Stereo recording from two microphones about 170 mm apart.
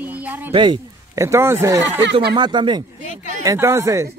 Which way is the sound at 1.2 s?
15° right (ahead or behind).